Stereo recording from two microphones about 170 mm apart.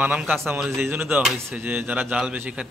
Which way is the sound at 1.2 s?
Centre (ahead or behind).